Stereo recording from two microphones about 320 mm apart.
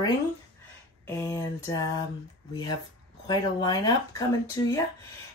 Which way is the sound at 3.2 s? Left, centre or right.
Centre.